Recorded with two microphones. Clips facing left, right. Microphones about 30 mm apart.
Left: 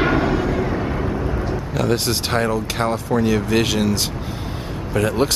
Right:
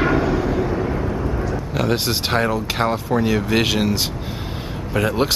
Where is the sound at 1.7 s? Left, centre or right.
Centre.